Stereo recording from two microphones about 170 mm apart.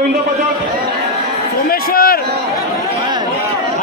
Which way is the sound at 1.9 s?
60° left (ahead or behind).